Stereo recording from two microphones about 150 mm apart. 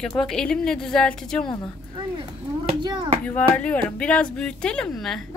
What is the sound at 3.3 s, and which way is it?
Speech, 10° left (ahead or behind).